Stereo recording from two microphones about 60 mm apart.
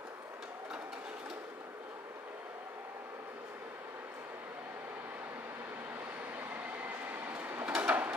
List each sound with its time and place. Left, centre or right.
6.5 s sliding door: right